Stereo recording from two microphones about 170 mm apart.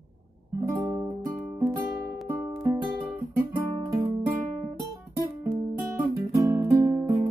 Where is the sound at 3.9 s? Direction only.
20° right (ahead or behind).